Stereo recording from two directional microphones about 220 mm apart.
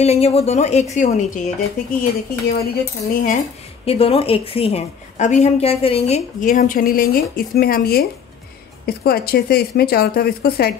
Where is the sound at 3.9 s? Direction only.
25° left (ahead or behind).